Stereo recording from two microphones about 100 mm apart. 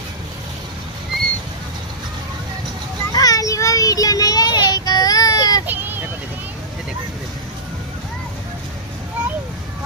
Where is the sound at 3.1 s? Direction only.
40° left (ahead or behind).